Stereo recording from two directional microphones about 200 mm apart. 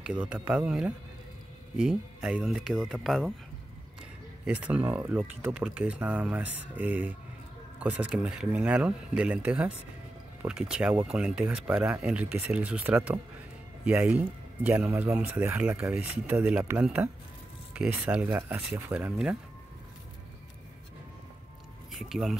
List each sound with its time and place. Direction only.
0.0 s speech: 5° right (ahead or behind)
4.5 s speech: 5° right (ahead or behind)
21.9 s speech: centre (ahead or behind)